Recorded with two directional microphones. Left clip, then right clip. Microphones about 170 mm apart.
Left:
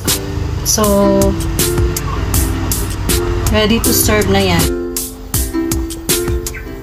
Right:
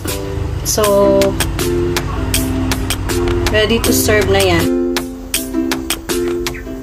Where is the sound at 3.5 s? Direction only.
50° right (ahead or behind).